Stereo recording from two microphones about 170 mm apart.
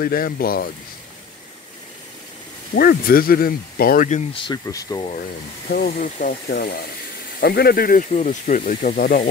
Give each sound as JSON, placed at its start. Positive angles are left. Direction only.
{"t": 0.0, "sound": "speech", "side_deg": 60}
{"t": 2.7, "sound": "speech", "side_deg": 65}
{"t": 4.3, "sound": "speech", "side_deg": 30}
{"t": 5.7, "sound": "speech", "side_deg": 60}
{"t": 6.5, "sound": "speech", "side_deg": 70}